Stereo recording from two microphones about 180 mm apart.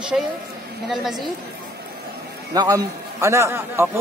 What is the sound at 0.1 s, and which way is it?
Speech, 10° right (ahead or behind).